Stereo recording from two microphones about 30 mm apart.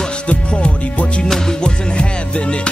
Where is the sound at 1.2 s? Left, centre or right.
Left.